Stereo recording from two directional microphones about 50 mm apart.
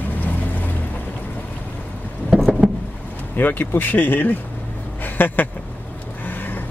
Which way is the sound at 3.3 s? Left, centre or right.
Left.